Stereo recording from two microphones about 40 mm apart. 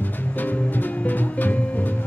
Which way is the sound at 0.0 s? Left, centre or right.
Left.